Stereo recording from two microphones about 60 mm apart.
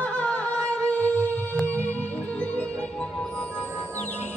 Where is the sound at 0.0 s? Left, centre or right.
Left.